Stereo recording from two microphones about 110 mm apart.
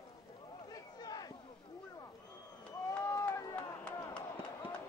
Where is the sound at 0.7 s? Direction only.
35° left (ahead or behind).